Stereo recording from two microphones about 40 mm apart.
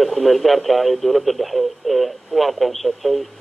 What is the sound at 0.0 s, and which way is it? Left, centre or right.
Speech, centre.